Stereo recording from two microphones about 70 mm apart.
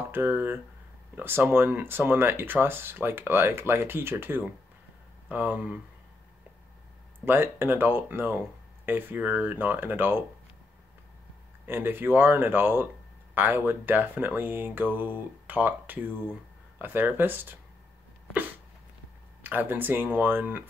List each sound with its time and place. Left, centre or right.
0.1 s speech: right
7.2 s speech: right
11.6 s speech: right
19.4 s speech: right